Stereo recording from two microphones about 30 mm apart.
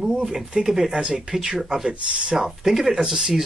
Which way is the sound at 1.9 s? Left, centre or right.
Right.